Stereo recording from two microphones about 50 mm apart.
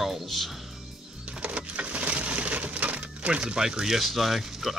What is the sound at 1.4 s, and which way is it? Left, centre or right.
Crushing, right.